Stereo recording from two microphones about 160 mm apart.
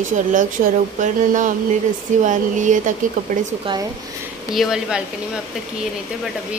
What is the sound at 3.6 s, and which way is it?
Speech, 25° right (ahead or behind).